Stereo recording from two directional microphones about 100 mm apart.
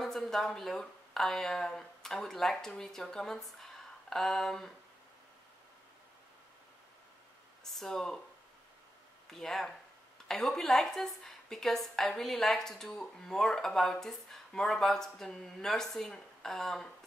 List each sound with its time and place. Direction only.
0.0 s speech: 5° left (ahead or behind)
7.6 s speech: 5° left (ahead or behind)
9.3 s a woman's voice: 5° left (ahead or behind)